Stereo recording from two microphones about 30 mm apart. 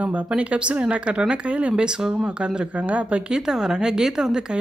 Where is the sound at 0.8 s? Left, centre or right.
Right.